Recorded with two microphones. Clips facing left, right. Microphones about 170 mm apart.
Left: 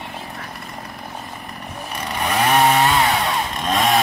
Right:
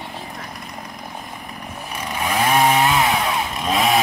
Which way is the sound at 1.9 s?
10° right (ahead or behind).